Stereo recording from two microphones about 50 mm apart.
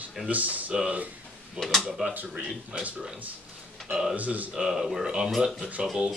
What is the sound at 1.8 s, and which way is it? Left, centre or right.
Speech, centre.